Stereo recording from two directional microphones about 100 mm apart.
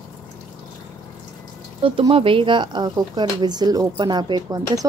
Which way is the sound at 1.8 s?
60° right (ahead or behind).